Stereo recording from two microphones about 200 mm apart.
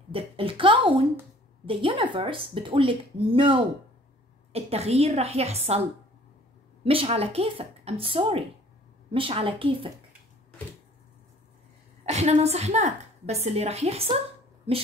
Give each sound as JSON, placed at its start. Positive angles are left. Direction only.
{"t": 0.1, "sound": "a woman's voice", "side_deg": -25}
{"t": 12.1, "sound": "a woman's voice", "side_deg": -35}